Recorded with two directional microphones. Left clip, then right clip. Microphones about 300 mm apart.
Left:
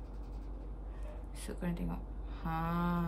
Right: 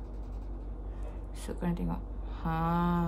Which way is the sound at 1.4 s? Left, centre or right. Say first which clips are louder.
Right 5 dB; centre.